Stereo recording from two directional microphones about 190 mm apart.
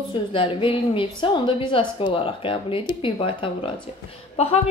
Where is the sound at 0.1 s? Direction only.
25° left (ahead or behind).